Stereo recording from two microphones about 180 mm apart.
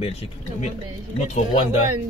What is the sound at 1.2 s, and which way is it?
Speech, 35° left (ahead or behind).